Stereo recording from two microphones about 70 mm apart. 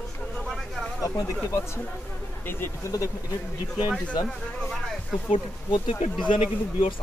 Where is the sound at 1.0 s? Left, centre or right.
Left.